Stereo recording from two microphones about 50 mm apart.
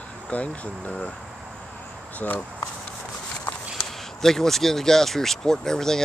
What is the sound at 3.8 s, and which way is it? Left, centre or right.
Speech, centre.